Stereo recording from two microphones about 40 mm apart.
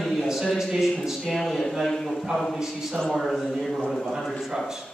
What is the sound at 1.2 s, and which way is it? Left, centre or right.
Speech, centre.